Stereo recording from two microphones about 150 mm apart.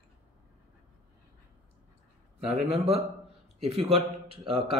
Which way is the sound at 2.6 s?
40° right (ahead or behind).